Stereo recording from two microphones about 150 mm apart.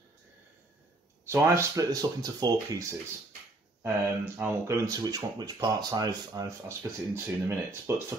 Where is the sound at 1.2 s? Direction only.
15° right (ahead or behind).